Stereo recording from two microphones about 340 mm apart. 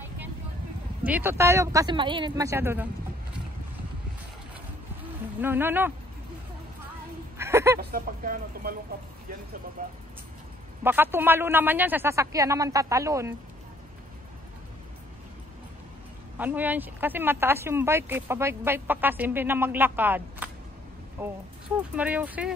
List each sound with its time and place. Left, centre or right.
1.0 s a man's voice: centre
5.4 s speech: centre
7.3 s a sound: centre
7.8 s speech: right
9.8 s speech: right
10.8 s a man's voice: centre
16.3 s a man's voice: centre